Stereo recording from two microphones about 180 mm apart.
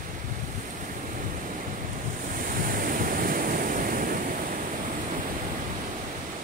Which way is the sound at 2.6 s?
50° right (ahead or behind).